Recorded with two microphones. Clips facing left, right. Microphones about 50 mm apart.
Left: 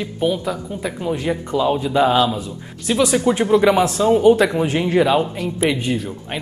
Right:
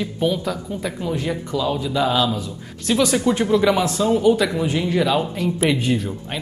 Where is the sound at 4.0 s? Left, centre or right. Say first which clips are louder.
Left 5 dB; left.